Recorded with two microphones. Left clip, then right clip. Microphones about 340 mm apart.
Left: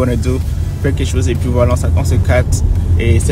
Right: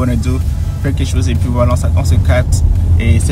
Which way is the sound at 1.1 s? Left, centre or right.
Centre.